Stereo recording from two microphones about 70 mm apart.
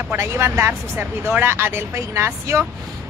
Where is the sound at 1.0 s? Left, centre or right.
Right.